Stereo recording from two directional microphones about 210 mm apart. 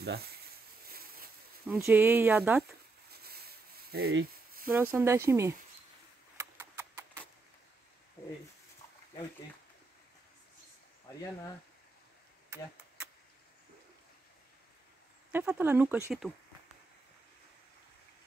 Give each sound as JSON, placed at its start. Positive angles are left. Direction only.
{"t": 0.0, "sound": "speech", "side_deg": -50}
{"t": 0.8, "sound": "a sound", "side_deg": -45}
{"t": 1.7, "sound": "speech", "side_deg": -10}
{"t": 3.1, "sound": "rub", "side_deg": -50}
{"t": 4.6, "sound": "speech", "side_deg": -10}
{"t": 6.3, "sound": "a sound", "side_deg": -15}
{"t": 15.3, "sound": "speech", "side_deg": -10}